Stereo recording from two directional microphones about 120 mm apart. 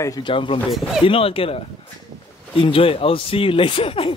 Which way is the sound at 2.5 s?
50° left (ahead or behind).